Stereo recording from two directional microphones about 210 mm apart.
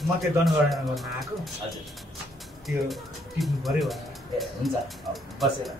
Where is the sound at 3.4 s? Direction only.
Centre (ahead or behind).